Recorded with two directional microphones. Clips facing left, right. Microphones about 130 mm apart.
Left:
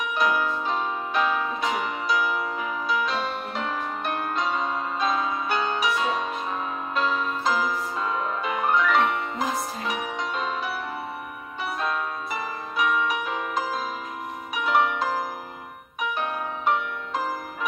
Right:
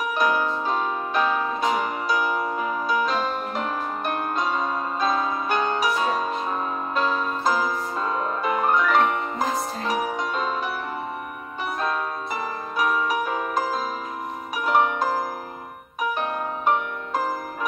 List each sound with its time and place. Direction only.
0.0 s music: 40° right (ahead or behind)
11.8 s music: 40° right (ahead or behind)